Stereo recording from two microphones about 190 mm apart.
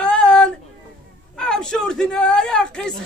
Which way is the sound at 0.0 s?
5° left (ahead or behind).